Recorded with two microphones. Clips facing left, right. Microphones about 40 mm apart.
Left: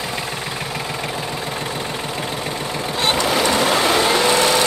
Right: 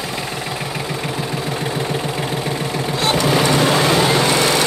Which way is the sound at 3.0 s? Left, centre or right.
Left.